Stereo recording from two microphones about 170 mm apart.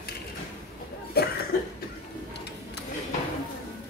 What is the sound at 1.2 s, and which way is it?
Cough, 65° left (ahead or behind).